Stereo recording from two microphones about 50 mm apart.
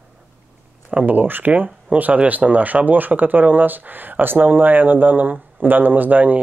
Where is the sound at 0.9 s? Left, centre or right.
Right.